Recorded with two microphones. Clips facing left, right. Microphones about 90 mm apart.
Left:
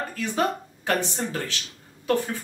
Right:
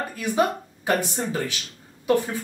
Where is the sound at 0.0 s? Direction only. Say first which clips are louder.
Right 2 dB; 10° right (ahead or behind).